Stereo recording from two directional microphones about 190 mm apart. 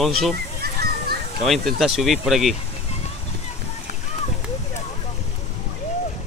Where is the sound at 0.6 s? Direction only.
55° right (ahead or behind).